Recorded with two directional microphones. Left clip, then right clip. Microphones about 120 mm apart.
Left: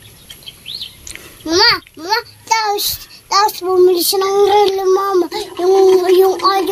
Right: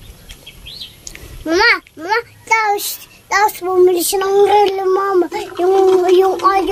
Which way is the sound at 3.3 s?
35° right (ahead or behind).